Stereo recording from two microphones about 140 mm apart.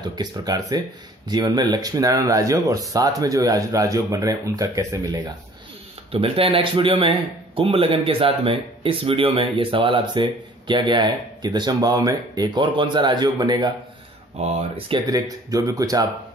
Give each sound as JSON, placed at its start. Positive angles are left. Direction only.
{"t": 0.1, "sound": "speech", "side_deg": -30}
{"t": 6.1, "sound": "a man's voice", "side_deg": -40}
{"t": 14.4, "sound": "speech", "side_deg": -45}
{"t": 15.0, "sound": "speech", "side_deg": -25}